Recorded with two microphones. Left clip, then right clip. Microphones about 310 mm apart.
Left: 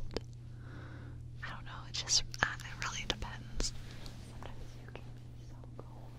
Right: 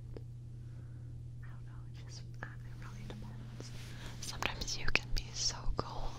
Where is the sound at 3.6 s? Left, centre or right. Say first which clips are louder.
Left 13 dB; left.